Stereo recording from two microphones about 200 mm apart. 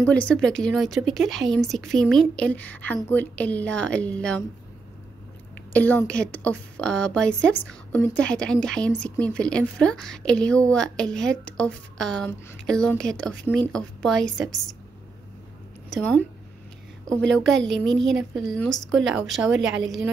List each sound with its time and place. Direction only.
0.0 s a woman's voice: 5° left (ahead or behind)
5.7 s a woman's voice: 10° left (ahead or behind)
15.9 s a woman's voice: 5° left (ahead or behind)
17.3 s a woman's voice: centre (ahead or behind)
17.6 s a woman's voice: 60° right (ahead or behind)
18.6 s a woman's voice: centre (ahead or behind)